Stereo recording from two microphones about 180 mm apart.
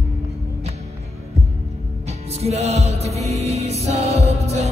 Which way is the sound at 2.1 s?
35° right (ahead or behind).